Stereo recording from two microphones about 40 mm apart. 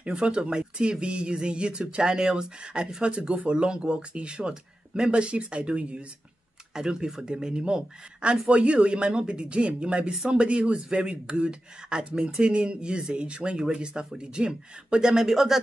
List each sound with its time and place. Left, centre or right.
0.0 s speech: right
6.7 s speech: centre